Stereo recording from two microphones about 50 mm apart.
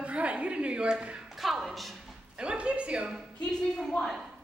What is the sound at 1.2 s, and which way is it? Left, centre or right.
Music, centre.